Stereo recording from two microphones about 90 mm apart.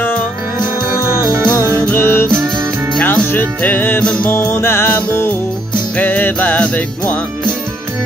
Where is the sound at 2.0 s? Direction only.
25° left (ahead or behind).